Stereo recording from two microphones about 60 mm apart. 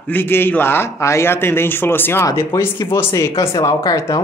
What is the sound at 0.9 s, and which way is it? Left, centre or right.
A man's voice, left.